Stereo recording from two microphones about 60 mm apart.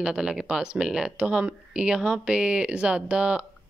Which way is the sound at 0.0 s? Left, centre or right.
Centre.